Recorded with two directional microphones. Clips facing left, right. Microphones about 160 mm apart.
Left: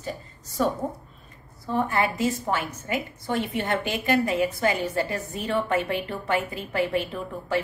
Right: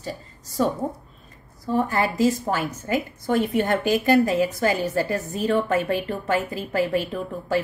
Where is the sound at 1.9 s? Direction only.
40° right (ahead or behind).